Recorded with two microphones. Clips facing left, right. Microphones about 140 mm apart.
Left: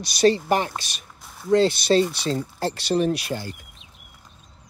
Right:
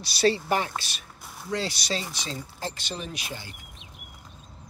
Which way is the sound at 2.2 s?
65° left (ahead or behind).